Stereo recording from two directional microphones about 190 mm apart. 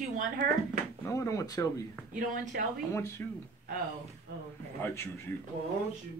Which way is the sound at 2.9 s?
15° left (ahead or behind).